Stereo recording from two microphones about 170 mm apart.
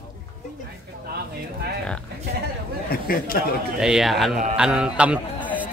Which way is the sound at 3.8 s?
5° right (ahead or behind).